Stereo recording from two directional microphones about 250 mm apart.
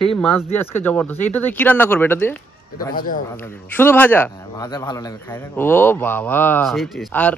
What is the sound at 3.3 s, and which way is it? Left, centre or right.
A man's voice, centre.